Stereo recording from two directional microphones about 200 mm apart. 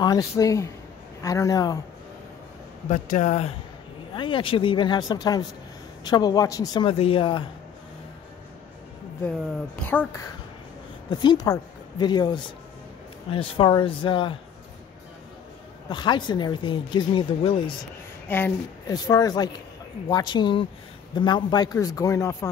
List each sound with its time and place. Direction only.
0.0 s a man's voice: 15° left (ahead or behind)
2.9 s speech: 35° left (ahead or behind)
9.8 s a man's voice: 10° left (ahead or behind)
11.1 s a woman's voice: 20° left (ahead or behind)
15.9 s speech: 20° left (ahead or behind)
18.3 s a man's voice: 15° left (ahead or behind)